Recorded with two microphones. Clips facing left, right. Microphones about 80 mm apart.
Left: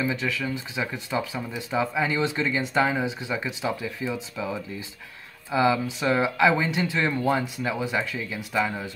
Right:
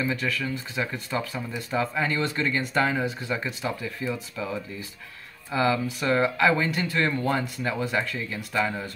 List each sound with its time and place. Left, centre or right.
0.0 s speech: centre